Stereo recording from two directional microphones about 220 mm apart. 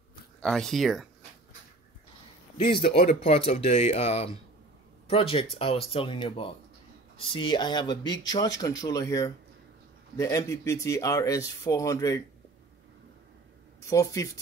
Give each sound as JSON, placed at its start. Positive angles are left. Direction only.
{"t": 0.4, "sound": "speech", "side_deg": 5}
{"t": 2.6, "sound": "speech", "side_deg": 25}
{"t": 13.8, "sound": "speech", "side_deg": 15}